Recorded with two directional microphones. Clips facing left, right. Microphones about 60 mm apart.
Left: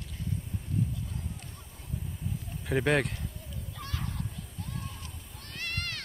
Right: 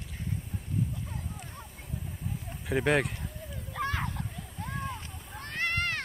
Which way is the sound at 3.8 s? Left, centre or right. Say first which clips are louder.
Right 7 dB; right.